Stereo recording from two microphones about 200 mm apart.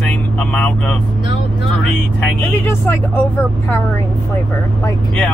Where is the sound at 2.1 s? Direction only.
10° left (ahead or behind).